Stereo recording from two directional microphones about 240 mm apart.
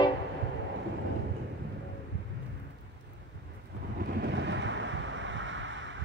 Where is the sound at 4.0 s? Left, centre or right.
Right.